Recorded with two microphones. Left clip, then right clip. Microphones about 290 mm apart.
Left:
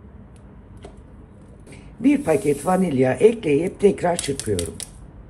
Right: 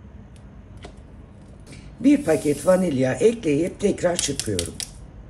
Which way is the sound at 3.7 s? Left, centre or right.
Centre.